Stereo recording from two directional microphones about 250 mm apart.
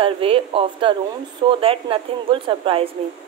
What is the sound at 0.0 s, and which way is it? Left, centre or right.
A woman's voice, right.